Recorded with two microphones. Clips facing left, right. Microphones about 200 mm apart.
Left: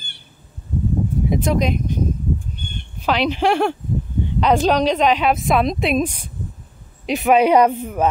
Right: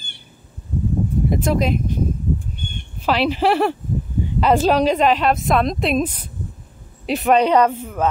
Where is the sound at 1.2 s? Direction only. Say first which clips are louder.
Even; centre (ahead or behind).